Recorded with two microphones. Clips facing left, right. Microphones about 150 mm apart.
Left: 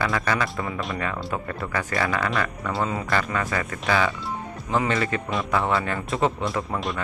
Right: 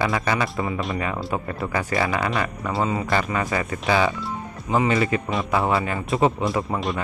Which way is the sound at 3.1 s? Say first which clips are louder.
Right 2 dB; 20° right (ahead or behind).